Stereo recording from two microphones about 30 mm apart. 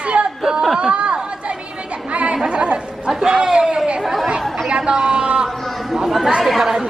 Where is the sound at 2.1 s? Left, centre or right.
Right.